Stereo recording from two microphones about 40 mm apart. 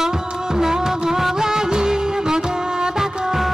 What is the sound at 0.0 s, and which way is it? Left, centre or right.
Music, centre.